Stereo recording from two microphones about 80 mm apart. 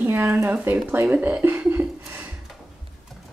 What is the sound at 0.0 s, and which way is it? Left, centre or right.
Speech, right.